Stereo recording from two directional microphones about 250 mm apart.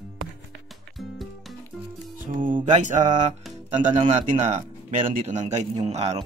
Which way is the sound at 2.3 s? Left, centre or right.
Right.